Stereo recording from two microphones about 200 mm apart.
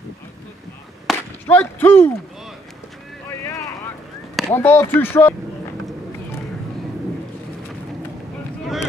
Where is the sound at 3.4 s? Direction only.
15° left (ahead or behind).